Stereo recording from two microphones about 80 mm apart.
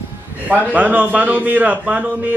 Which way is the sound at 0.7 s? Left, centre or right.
Centre.